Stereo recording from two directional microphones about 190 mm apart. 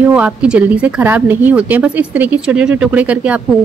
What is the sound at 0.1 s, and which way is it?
A woman's voice, 5° right (ahead or behind).